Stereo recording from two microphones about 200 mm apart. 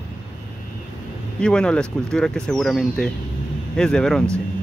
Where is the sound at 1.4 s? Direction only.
5° left (ahead or behind).